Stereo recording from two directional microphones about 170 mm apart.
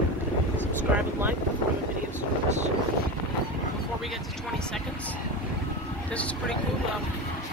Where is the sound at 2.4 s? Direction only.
45° right (ahead or behind).